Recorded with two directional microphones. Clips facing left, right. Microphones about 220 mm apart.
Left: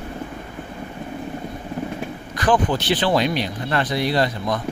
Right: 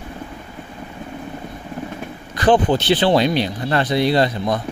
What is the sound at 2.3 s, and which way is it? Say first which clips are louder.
Speech: right 4 dB; 25° right (ahead or behind).